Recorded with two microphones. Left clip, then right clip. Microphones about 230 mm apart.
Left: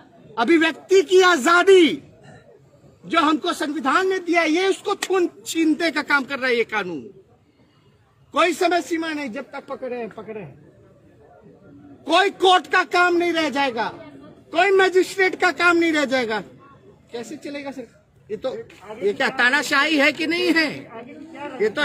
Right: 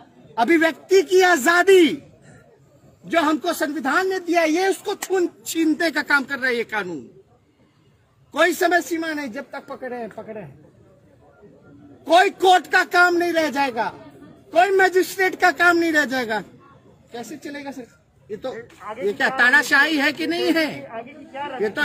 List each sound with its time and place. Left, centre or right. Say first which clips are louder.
0.3 s a man's voice: even; centre
3.1 s a man's voice: left 1 dB; centre
8.3 s a man's voice: right 1 dB; centre
12.0 s a man's voice: right 2 dB; centre
20.9 s speech: right 4 dB; right
21.5 s a man's voice: left 2 dB; centre